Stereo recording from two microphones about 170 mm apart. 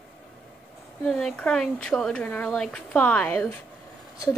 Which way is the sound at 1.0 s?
Centre (ahead or behind).